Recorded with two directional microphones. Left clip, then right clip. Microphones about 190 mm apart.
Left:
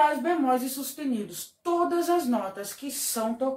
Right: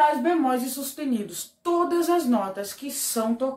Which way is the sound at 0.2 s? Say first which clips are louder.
Right 2 dB; 15° right (ahead or behind).